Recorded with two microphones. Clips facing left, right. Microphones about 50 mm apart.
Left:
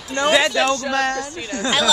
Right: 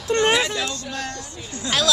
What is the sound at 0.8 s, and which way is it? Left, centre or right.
Speech, left.